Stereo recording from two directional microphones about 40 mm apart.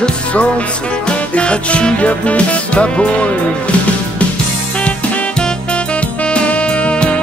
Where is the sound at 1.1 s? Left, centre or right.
Left.